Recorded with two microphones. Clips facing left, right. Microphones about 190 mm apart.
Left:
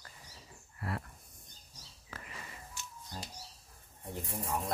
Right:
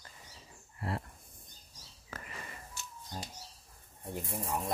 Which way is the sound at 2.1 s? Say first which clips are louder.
Right 2 dB; 45° right (ahead or behind).